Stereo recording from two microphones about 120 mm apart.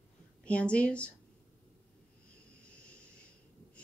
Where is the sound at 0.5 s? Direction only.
10° left (ahead or behind).